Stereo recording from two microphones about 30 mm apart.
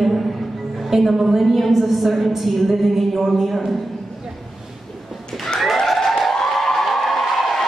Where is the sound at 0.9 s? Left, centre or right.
Centre.